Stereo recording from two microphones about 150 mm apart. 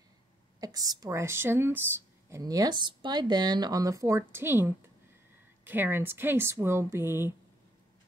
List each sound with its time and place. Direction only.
0.6 s speech: 25° right (ahead or behind)